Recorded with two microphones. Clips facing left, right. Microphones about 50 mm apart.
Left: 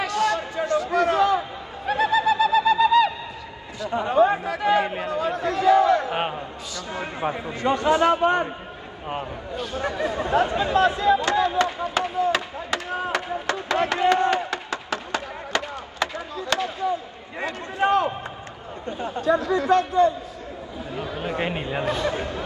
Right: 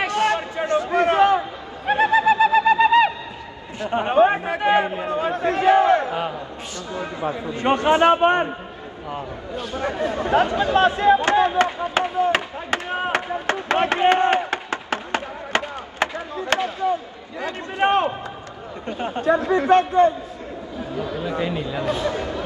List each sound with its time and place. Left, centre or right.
0.0 s a sound: right
1.9 s bird: right
3.8 s chatter: right
6.0 s a sound: left
7.5 s a man's voice: right
9.8 s a man's voice: right
10.6 s a sound: right
18.9 s a man's voice: right
21.2 s speech: left